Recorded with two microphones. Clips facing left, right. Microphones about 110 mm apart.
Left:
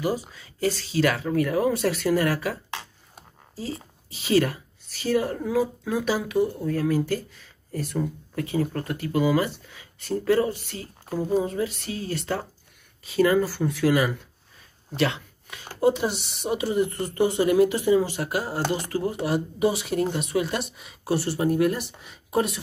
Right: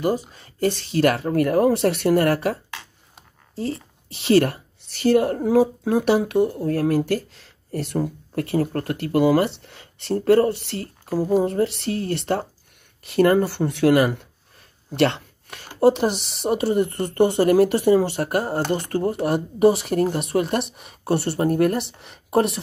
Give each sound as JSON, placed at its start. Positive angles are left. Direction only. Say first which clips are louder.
{"t": 0.0, "sound": "speech", "louder": "right 4 dB", "side_deg": -50}
{"t": 3.5, "sound": "speech", "louder": "right 6 dB", "side_deg": -65}
{"t": 8.4, "sound": "speech", "louder": "right 4 dB", "side_deg": -60}
{"t": 11.2, "sound": "speech", "louder": "right 5 dB", "side_deg": -55}